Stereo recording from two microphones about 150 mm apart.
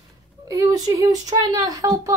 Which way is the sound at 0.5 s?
25° right (ahead or behind).